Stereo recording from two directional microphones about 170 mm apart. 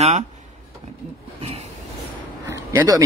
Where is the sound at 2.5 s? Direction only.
20° right (ahead or behind).